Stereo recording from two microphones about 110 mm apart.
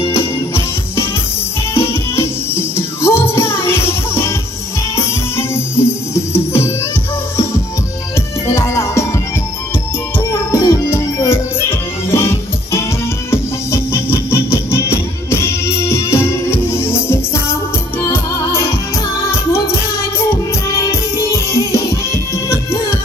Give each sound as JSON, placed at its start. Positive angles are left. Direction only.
{"t": 0.1, "sound": "music", "side_deg": 20}
{"t": 8.5, "sound": "music", "side_deg": 25}
{"t": 10.5, "sound": "music", "side_deg": 25}
{"t": 20.7, "sound": "music", "side_deg": 30}